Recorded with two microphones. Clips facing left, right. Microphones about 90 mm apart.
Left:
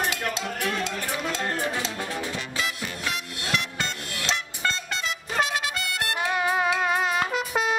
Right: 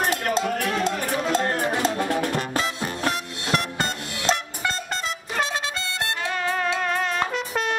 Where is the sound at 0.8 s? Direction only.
45° right (ahead or behind).